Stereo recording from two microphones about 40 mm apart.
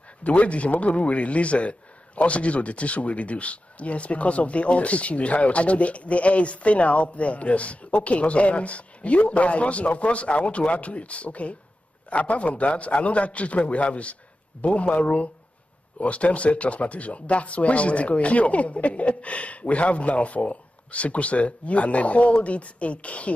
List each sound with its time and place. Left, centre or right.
0.2 s a man's voice: left